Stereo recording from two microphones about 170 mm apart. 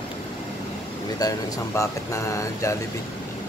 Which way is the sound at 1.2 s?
25° left (ahead or behind).